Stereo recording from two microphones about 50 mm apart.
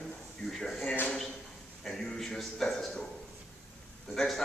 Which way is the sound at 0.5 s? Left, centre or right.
Centre.